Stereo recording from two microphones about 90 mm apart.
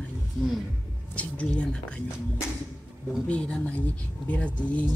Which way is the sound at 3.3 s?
15° left (ahead or behind).